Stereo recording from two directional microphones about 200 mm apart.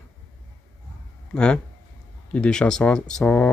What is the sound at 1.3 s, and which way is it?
Speech, 5° left (ahead or behind).